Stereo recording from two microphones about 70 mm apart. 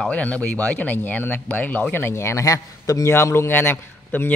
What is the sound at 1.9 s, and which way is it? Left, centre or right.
A man's voice, left.